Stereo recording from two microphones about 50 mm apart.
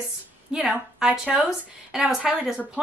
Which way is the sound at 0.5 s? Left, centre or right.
Centre.